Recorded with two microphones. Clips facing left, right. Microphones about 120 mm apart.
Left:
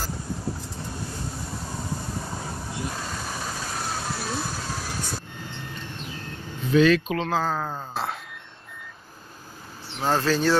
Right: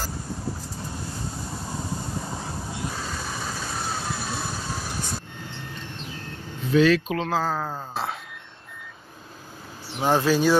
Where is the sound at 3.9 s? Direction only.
Centre (ahead or behind).